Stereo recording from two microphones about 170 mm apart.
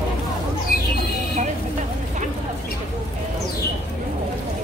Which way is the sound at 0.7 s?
60° left (ahead or behind).